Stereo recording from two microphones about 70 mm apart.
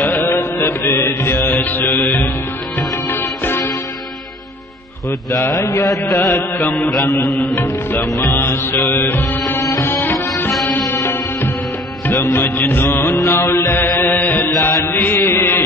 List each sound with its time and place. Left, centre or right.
0.0 s mantra: left
3.1 s music: left
5.5 s mantra: left
6.1 s music: left
6.6 s music: left
9.6 s music: left
9.8 s music: left
10.1 s music: left
14.6 s mantra: left